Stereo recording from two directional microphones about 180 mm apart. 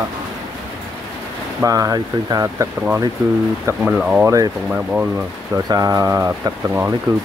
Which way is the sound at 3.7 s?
5° right (ahead or behind).